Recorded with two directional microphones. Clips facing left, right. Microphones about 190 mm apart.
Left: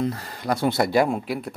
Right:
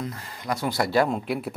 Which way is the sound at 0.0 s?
35° left (ahead or behind).